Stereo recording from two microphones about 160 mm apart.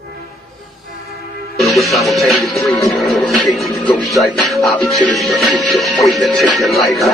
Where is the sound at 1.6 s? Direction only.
Centre (ahead or behind).